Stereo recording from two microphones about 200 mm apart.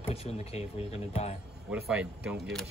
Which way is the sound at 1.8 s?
5° right (ahead or behind).